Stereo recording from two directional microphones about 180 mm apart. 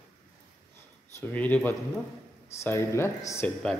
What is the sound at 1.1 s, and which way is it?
Speech, 10° left (ahead or behind).